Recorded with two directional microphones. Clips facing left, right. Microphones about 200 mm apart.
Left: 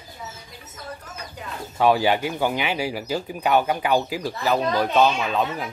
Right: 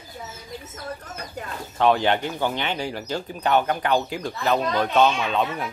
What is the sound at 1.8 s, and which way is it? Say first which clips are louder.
Speech: left 1 dB; 5° left (ahead or behind).